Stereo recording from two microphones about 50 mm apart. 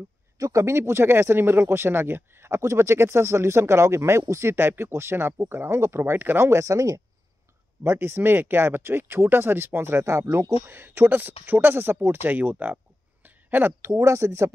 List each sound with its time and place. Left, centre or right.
0.5 s speech: right
0.7 s speech: right
6.1 s speech: right
6.4 s speech: right
7.8 s speech: right
12.3 s a sound: right
13.7 s speech: right